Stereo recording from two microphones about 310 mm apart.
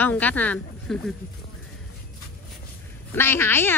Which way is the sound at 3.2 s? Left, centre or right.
Centre.